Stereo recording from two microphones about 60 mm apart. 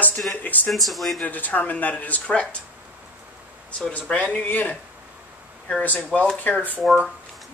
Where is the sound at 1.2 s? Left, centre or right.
Left.